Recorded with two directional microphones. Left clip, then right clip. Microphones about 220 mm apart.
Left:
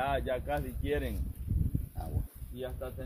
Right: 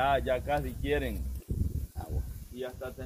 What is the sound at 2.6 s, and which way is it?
Speech, 55° left (ahead or behind).